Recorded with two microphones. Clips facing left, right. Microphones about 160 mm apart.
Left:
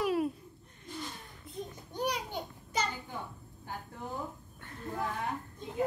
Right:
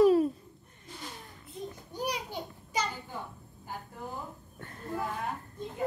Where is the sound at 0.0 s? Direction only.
35° right (ahead or behind).